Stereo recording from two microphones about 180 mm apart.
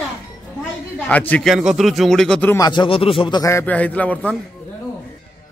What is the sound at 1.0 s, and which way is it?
A man's voice, 10° left (ahead or behind).